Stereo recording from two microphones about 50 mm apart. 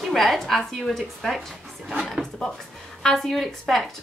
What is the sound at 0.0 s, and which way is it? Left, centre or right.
A woman's voice, centre.